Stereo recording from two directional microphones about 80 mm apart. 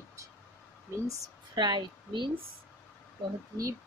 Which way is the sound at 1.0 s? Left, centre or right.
Right.